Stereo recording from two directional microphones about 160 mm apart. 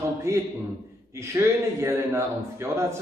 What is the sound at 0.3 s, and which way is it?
A man's voice, 15° right (ahead or behind).